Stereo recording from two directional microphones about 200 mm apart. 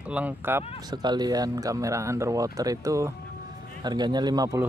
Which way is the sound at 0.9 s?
20° right (ahead or behind).